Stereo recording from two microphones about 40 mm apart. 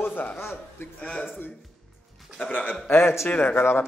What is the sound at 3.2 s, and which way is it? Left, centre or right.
Speech, left.